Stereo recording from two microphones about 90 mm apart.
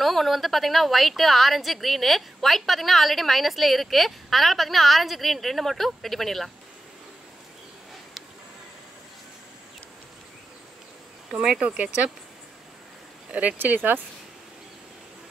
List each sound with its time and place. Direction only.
0.0 s a woman's voice: centre (ahead or behind)
11.3 s speech: 10° right (ahead or behind)
13.3 s speech: 15° right (ahead or behind)